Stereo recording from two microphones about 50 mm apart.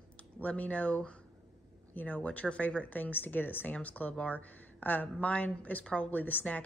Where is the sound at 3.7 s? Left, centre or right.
Left.